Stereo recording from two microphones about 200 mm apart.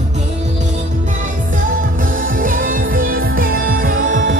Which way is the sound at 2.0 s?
45° right (ahead or behind).